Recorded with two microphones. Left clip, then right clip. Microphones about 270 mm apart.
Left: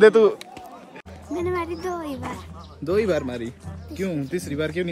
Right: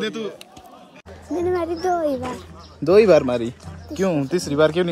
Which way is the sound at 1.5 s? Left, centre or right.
Centre.